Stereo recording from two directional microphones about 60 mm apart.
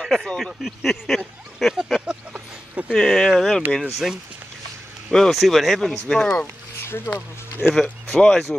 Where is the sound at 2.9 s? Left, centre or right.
Centre.